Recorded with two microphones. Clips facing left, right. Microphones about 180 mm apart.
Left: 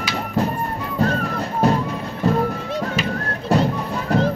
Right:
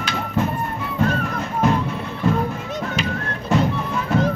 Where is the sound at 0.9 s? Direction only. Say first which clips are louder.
Left 1 dB; 35° left (ahead or behind).